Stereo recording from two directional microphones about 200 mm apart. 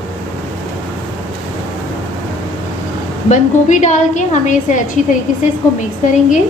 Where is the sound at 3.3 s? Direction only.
35° left (ahead or behind).